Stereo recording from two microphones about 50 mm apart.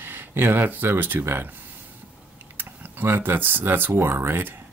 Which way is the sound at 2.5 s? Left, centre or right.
Right.